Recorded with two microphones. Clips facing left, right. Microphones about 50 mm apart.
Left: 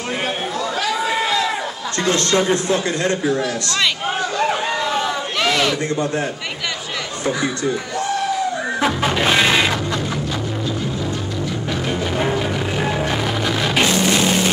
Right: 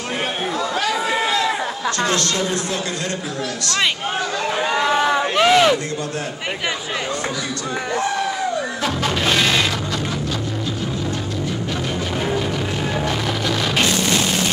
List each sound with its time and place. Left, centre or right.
0.8 s a sound: centre
2.1 s speech: left
4.6 s crowd: centre
8.8 s music: centre
12.2 s music: centre